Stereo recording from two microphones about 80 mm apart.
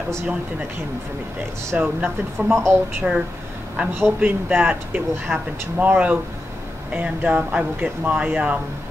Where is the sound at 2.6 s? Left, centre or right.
Right.